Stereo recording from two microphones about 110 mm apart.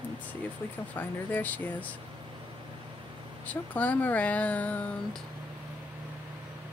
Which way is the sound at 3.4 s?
15° left (ahead or behind).